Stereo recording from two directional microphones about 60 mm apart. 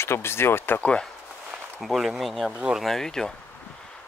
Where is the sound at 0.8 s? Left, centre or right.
Centre.